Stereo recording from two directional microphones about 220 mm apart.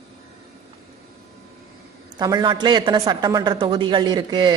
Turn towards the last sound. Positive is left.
turn(degrees=-20)  # may be behind; listen again after turning